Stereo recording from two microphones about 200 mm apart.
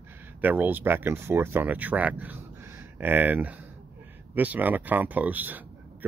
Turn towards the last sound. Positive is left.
turn(degrees=-10)  # may be behind; listen again after turning